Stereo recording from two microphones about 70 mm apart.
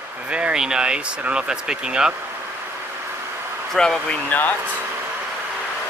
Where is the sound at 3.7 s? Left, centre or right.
Centre.